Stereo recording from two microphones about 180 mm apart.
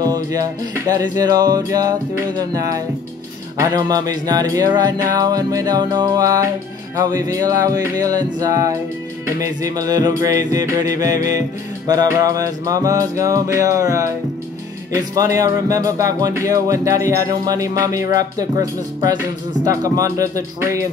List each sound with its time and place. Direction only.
0.0 s speech: 20° right (ahead or behind)
11.9 s music: 20° right (ahead or behind)
15.1 s speech: 20° right (ahead or behind)